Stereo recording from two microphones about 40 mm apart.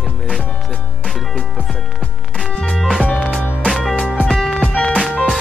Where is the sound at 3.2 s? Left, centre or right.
Left.